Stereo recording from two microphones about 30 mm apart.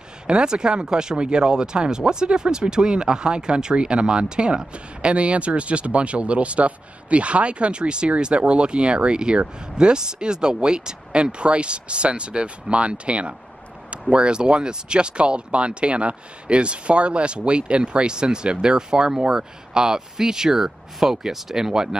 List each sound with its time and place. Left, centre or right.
0.3 s speech: right